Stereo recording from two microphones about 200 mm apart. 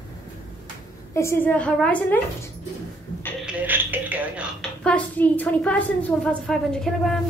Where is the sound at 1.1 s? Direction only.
10° left (ahead or behind).